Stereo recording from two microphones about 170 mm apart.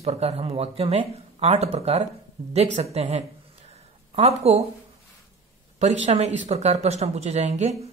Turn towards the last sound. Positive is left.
turn(degrees=-40)  # may be behind; listen again after turning